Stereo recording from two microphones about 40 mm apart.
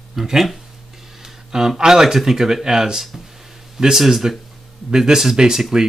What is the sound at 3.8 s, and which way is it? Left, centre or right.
Speech, centre.